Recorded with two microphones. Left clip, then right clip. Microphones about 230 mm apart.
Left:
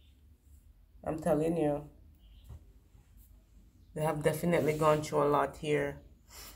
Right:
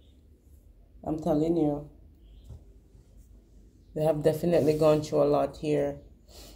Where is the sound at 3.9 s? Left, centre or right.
Left.